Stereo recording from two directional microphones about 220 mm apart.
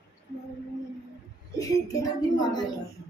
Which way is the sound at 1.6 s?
15° left (ahead or behind).